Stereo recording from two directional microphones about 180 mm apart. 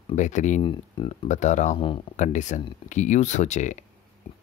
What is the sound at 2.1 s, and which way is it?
Speech, 40° left (ahead or behind).